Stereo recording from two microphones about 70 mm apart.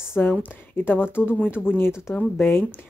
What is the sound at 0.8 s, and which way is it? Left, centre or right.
Speech, left.